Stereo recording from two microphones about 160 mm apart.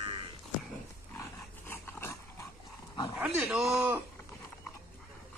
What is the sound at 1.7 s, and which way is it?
Dog, 15° left (ahead or behind).